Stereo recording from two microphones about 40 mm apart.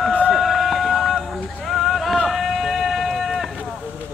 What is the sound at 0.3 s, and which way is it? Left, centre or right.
Run, centre.